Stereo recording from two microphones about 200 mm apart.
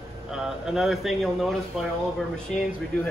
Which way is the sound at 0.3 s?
Centre (ahead or behind).